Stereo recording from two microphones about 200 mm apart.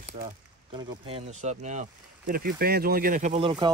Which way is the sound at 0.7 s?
25° right (ahead or behind).